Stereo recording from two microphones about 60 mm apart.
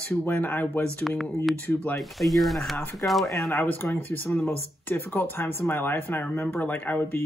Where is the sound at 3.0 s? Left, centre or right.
Left.